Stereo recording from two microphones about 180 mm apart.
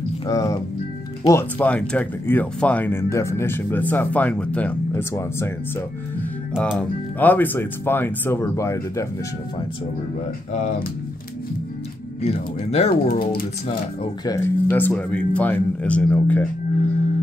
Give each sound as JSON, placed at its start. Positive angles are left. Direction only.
{"t": 0.3, "sound": "speech", "side_deg": 20}
{"t": 6.5, "sound": "speech", "side_deg": 0}
{"t": 10.5, "sound": "speech", "side_deg": 40}
{"t": 12.2, "sound": "speech", "side_deg": 35}
{"t": 12.9, "sound": "speech", "side_deg": 55}
{"t": 14.2, "sound": "speech", "side_deg": 15}